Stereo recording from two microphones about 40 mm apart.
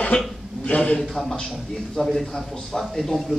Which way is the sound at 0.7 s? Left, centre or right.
Left.